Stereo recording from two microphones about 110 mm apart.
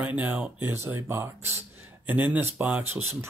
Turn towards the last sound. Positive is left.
turn(degrees=-20)  # may be behind; listen again after turning